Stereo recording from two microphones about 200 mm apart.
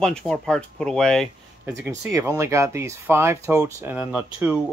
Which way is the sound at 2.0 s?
15° right (ahead or behind).